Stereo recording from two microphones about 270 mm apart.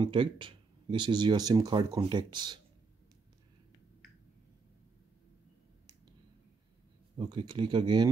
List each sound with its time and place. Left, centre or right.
0.0 s speech: centre
7.2 s speech: centre